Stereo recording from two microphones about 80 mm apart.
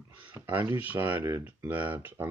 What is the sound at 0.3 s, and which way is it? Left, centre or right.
Speech, right.